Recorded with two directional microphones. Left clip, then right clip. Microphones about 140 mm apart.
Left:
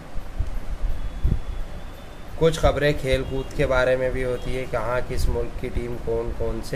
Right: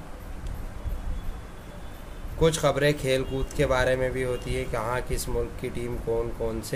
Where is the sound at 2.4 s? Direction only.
20° right (ahead or behind).